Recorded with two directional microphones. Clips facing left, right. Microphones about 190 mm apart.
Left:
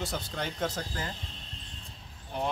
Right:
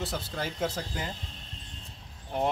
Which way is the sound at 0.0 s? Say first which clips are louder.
Right 1 dB; 5° right (ahead or behind).